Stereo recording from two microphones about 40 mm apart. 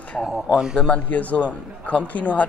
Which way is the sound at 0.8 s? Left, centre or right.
Left.